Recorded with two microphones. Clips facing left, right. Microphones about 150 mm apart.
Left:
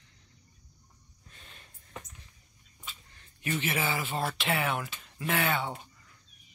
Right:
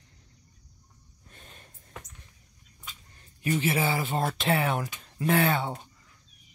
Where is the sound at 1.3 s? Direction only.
45° right (ahead or behind).